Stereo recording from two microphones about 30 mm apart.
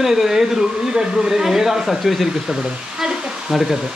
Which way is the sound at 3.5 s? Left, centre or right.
Centre.